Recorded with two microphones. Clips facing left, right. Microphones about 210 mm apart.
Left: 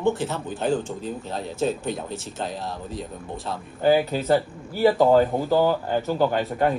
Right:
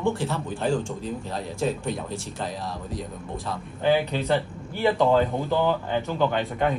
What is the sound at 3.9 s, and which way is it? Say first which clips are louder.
Speech: left 3 dB; 5° left (ahead or behind).